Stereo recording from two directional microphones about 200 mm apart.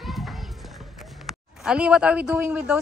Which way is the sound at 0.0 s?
Centre (ahead or behind).